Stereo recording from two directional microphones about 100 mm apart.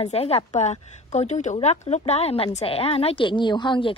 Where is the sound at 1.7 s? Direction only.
90° left; by 3.9 s 50° left (ahead or behind).